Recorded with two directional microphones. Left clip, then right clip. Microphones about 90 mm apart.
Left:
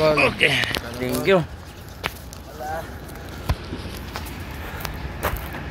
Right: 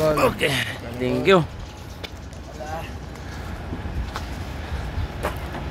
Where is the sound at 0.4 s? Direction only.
Centre (ahead or behind).